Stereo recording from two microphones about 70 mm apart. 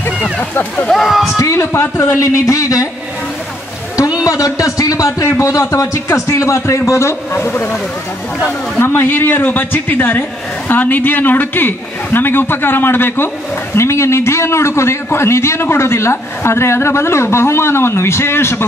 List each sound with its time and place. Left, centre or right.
0.0 s a sound: left
0.8 s speech: centre
1.4 s speech: left
4.2 s a man's voice: left